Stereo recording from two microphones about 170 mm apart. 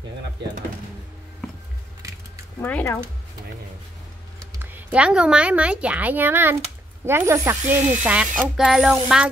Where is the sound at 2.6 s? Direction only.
10° left (ahead or behind).